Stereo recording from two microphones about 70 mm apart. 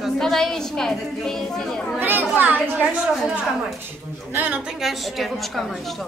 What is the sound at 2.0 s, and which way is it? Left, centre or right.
Speech, right.